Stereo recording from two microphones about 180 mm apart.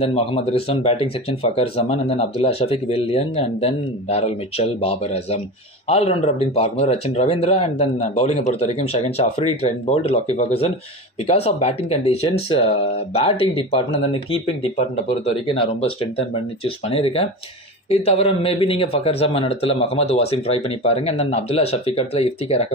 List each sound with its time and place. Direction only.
0.0 s speech: 30° left (ahead or behind)